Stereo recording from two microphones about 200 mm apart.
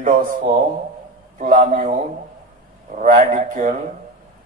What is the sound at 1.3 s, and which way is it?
Speech, 40° right (ahead or behind).